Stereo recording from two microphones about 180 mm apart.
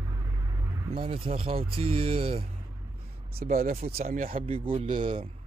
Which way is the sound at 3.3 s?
50° right (ahead or behind).